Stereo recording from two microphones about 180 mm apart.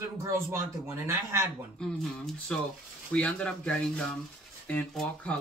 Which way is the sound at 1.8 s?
5° left (ahead or behind).